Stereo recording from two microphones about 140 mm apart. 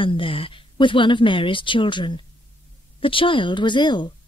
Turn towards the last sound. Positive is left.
turn(degrees=30)  # may be behind; listen again after turning